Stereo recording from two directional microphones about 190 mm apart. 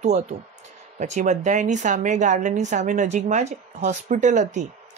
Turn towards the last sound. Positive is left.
turn(degrees=-40)  # may be behind; listen again after turning